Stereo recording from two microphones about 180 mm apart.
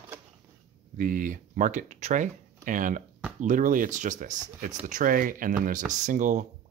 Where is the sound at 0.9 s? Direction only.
50° right (ahead or behind).